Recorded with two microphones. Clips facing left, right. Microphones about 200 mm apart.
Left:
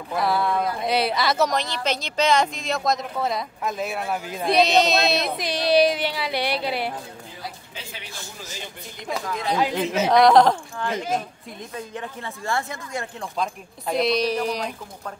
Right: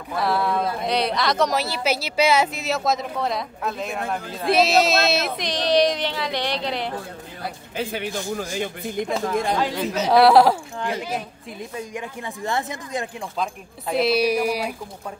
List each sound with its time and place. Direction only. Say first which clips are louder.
0.1 s a woman's voice: even; centre (ahead or behind)
1.6 s a woman's voice: right 3 dB; 5° right (ahead or behind); by 4.5 s 10° left (ahead or behind)
4.5 s speech: right 1 dB; 5° right (ahead or behind)
7.4 s a man's voice: right 11 dB; 55° right (ahead or behind)
9.6 s speech: left 1 dB; 10° left (ahead or behind)
10.1 s a woman's voice: right 1 dB; 5° right (ahead or behind)
13.4 s a woman's voice: left 1 dB; centre (ahead or behind)